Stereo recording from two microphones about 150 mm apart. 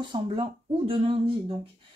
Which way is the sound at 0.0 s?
35° right (ahead or behind).